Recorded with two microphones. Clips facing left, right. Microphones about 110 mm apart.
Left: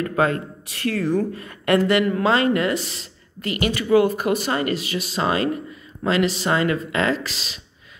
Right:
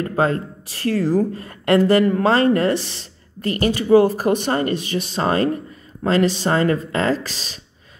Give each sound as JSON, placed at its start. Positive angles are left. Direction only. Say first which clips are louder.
{"t": 0.0, "sound": "speech", "louder": "right 1 dB", "side_deg": -30}